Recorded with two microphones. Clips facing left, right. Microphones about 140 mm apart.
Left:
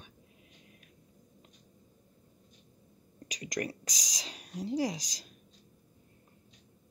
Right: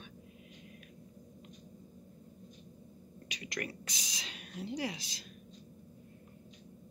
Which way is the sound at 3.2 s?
40° left (ahead or behind).